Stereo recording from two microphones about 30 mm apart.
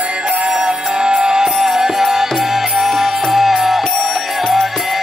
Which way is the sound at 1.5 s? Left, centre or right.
Centre.